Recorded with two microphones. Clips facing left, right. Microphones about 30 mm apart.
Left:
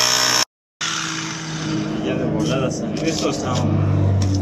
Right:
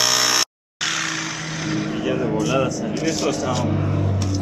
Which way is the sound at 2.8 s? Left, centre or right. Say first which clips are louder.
Left 1 dB; left.